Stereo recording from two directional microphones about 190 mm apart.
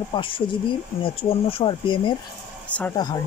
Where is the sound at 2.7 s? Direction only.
5° left (ahead or behind).